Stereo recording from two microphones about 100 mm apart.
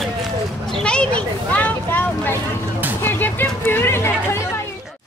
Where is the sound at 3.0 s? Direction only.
20° left (ahead or behind).